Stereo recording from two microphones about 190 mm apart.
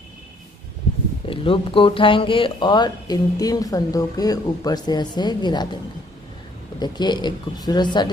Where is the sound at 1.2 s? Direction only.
25° left (ahead or behind).